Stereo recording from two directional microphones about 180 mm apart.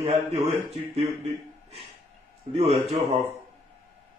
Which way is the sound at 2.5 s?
35° right (ahead or behind).